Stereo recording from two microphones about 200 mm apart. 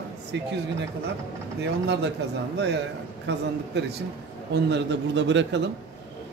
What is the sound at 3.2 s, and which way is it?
Speech, 60° right (ahead or behind).